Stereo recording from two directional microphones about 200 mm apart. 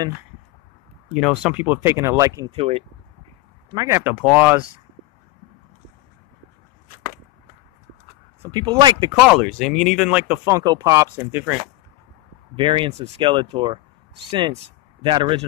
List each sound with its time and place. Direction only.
1.1 s speech: 5° right (ahead or behind)
2.5 s speech: 30° right (ahead or behind)
3.7 s speech: 15° right (ahead or behind)
8.4 s speech: 20° right (ahead or behind)
9.1 s speech: 5° right (ahead or behind)
12.5 s speech: 25° right (ahead or behind)